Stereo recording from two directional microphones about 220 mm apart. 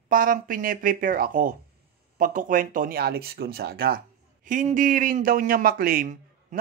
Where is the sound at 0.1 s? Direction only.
40° right (ahead or behind).